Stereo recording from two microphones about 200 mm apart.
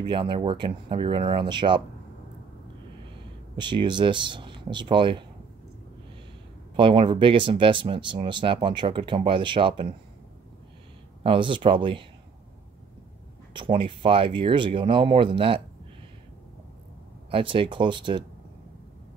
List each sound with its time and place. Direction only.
0.0 s speech: 25° right (ahead or behind)
3.5 s speech: 25° right (ahead or behind)
6.8 s speech: 25° right (ahead or behind)
11.2 s speech: 25° right (ahead or behind)
13.5 s speech: 25° right (ahead or behind)
17.3 s speech: 25° right (ahead or behind)